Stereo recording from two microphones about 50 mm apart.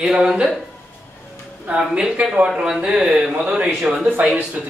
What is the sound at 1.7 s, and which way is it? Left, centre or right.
A man's voice, centre.